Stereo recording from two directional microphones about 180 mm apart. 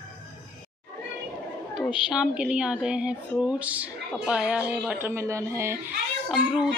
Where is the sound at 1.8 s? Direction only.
25° left (ahead or behind).